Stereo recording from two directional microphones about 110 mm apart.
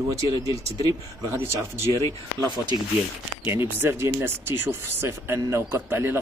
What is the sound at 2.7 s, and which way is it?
Speech, 45° left (ahead or behind).